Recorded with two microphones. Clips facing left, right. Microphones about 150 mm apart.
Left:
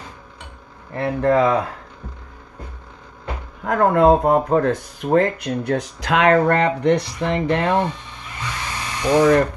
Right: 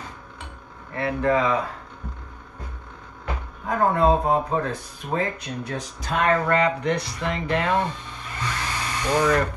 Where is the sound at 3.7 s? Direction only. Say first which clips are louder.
Left 5 dB; 65° left (ahead or behind); by 6.4 s 85° left.